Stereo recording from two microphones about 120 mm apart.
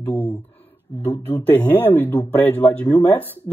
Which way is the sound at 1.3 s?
15° left (ahead or behind).